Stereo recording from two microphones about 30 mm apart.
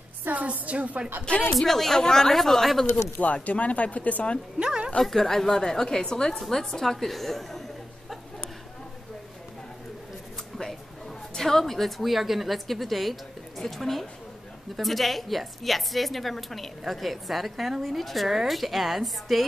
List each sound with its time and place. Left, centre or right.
0.3 s a woman's voice: right
1.3 s speech: left
1.6 s a woman's voice: centre
2.3 s a woman's voice: centre
3.4 s speech: left
4.6 s a sound: right
5.0 s a woman's voice: centre
10.7 s a sound: centre
12.0 s a woman's voice: centre